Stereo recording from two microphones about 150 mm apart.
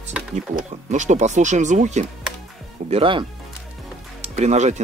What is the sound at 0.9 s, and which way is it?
Speech, 50° right (ahead or behind).